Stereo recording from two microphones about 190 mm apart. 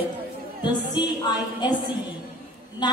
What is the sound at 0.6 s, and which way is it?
A woman's voice, 20° left (ahead or behind).